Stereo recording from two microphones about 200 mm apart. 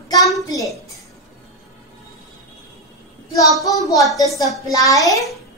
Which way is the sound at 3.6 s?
15° left (ahead or behind).